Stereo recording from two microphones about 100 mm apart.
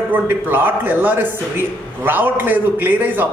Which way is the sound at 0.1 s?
20° right (ahead or behind).